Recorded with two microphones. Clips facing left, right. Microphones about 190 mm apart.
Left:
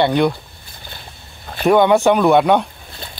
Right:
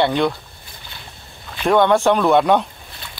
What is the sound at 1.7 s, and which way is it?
Speech, 5° left (ahead or behind).